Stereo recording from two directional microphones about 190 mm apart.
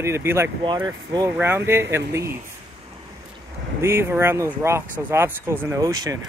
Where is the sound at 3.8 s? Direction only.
15° right (ahead or behind).